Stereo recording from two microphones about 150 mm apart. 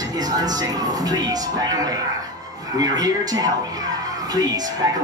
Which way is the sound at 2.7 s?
25° right (ahead or behind).